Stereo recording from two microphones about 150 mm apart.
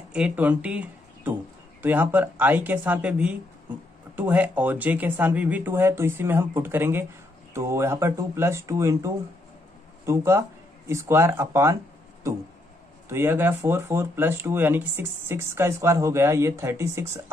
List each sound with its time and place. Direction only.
0.1 s speech: 10° right (ahead or behind)
13.1 s speech: 15° right (ahead or behind)